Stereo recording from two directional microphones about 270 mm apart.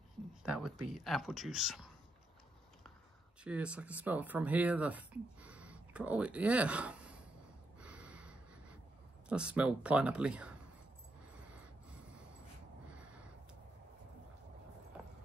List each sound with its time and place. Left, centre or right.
0.5 s speech: centre
3.4 s speech: centre
7.8 s gasp: centre
9.3 s speech: centre